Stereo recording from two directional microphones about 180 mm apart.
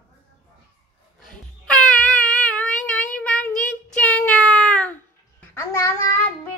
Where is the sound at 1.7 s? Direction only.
5° left (ahead or behind).